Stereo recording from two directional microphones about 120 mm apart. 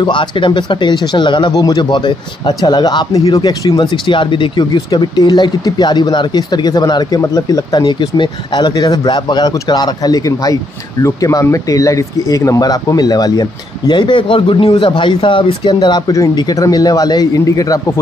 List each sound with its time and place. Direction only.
0.0 s speech: 40° left (ahead or behind)